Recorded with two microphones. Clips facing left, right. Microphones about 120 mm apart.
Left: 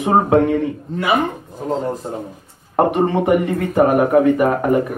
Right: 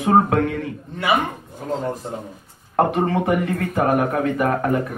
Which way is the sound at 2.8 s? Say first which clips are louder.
Left 3 dB; 20° left (ahead or behind).